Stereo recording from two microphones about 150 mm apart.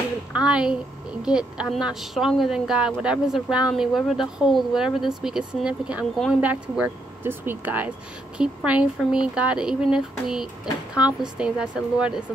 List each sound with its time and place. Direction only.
0.3 s speech: 5° right (ahead or behind)